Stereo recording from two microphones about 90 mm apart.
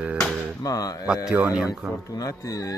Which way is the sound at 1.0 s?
10° right (ahead or behind).